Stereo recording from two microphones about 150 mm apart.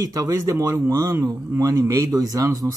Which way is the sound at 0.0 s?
25° right (ahead or behind).